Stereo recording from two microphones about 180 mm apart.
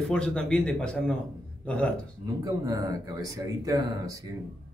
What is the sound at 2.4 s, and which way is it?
Speech, 20° right (ahead or behind).